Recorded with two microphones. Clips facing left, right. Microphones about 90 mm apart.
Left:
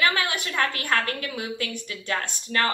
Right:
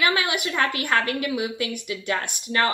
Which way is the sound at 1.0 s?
40° left (ahead or behind).